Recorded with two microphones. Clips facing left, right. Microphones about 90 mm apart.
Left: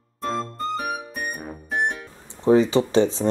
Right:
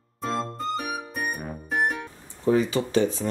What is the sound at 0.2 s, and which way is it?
Music, centre (ahead or behind).